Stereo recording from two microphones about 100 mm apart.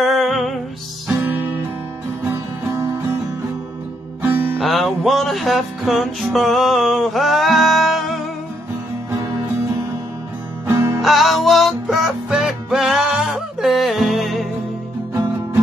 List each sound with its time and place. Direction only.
0.0 s music: centre (ahead or behind)
1.2 s music: 20° right (ahead or behind)
2.2 s music: 30° right (ahead or behind)
4.2 s music: 20° right (ahead or behind)
4.6 s music: centre (ahead or behind)
9.1 s music: 30° right (ahead or behind)
10.7 s music: 30° right (ahead or behind)
11.0 s music: centre (ahead or behind)